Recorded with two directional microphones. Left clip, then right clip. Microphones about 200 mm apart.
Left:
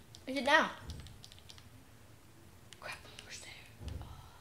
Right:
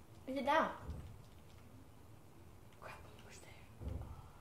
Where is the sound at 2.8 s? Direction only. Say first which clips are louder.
Left 7 dB; 35° left (ahead or behind).